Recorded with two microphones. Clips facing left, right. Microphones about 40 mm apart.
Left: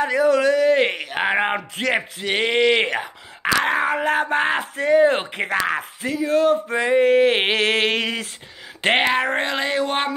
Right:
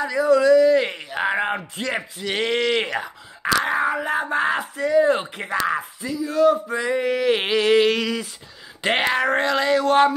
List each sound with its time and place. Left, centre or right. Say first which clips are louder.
0.0 s speech: even; left
2.2 s speech: left 3 dB; left
3.6 s speech: left 2 dB; left
9.0 s speech: even; left